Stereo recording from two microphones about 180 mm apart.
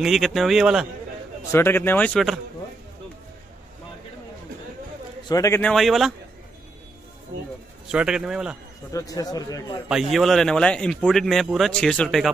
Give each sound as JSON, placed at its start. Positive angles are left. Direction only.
{"t": 0.0, "sound": "a man's voice", "side_deg": 0}
{"t": 1.5, "sound": "speech", "side_deg": 10}
{"t": 5.3, "sound": "speech", "side_deg": 20}
{"t": 5.6, "sound": "a man's voice", "side_deg": 0}
{"t": 7.9, "sound": "a man's voice", "side_deg": -5}
{"t": 8.9, "sound": "speech", "side_deg": 20}
{"t": 9.8, "sound": "a man's voice", "side_deg": 0}